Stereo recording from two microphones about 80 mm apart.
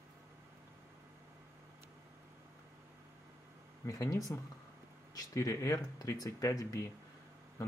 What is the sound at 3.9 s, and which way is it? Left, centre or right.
Speech, left.